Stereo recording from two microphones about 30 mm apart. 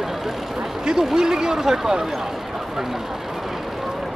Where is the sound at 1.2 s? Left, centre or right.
Right.